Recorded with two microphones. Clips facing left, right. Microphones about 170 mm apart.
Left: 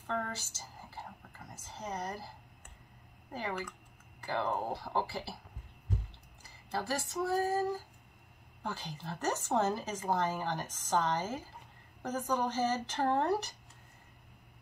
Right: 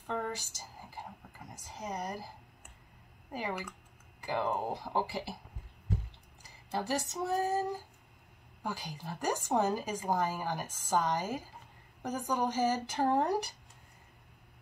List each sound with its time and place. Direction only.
0.0 s a sound: 15° right (ahead or behind)
1.5 s a woman's voice: 15° right (ahead or behind)
6.7 s female singing: 20° right (ahead or behind)
8.6 s a woman's voice: 10° right (ahead or behind)